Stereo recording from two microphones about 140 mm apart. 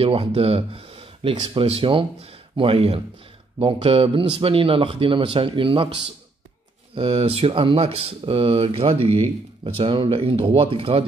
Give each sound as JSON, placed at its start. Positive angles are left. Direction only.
{"t": 0.0, "sound": "speech", "side_deg": -40}